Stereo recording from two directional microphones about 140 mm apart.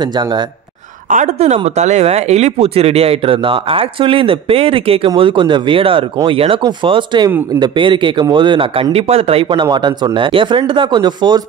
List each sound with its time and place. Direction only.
1.1 s speech: 55° right (ahead or behind); by 11.4 s 30° right (ahead or behind)